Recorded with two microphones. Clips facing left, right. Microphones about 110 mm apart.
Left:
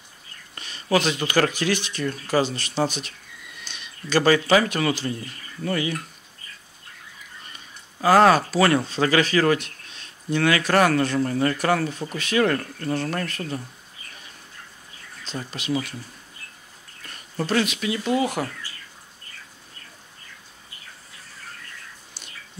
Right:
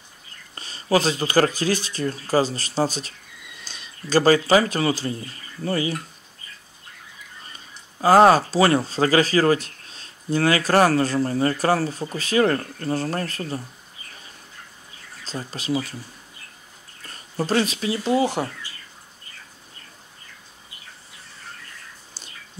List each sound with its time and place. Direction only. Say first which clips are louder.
0.6 s speech: right 1 dB; 35° right (ahead or behind)
8.0 s speech: right 2 dB; 30° right (ahead or behind)
15.2 s speech: right 1 dB; 35° right (ahead or behind)
17.0 s speech: right 2 dB; 35° right (ahead or behind)